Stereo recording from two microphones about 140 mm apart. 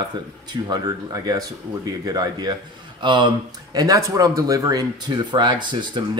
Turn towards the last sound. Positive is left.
turn(degrees=-35)  # may be behind; listen again after turning